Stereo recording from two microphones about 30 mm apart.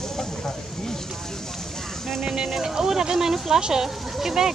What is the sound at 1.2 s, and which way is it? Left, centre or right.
Vehicle, centre.